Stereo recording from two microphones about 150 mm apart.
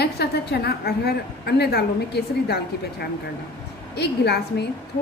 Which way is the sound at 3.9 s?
90° left.